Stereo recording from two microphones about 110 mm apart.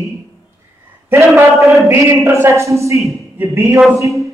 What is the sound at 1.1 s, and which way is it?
A man's voice, 25° right (ahead or behind).